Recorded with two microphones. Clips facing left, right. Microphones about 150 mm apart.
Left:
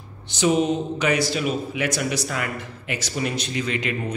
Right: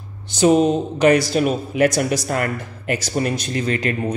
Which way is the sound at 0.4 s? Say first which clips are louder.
Right 5 dB; 40° right (ahead or behind).